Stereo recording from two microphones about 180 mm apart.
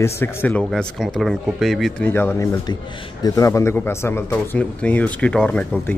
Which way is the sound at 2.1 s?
10° left (ahead or behind).